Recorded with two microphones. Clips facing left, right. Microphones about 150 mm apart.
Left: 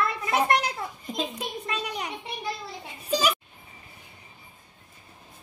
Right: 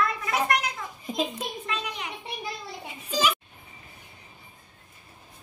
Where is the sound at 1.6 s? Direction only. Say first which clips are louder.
Left 2 dB; 40° left (ahead or behind).